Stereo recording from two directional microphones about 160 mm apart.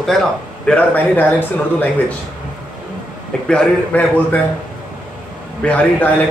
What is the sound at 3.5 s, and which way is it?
Speech, 10° left (ahead or behind).